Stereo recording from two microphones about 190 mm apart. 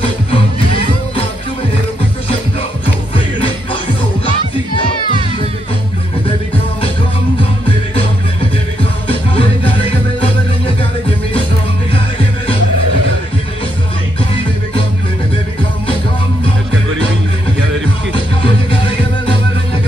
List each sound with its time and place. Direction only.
0.3 s music: 30° left (ahead or behind)
9.3 s music: 30° left (ahead or behind)
18.1 s music: 25° left (ahead or behind)